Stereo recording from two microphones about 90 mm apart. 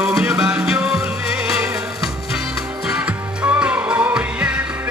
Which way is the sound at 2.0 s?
5° right (ahead or behind).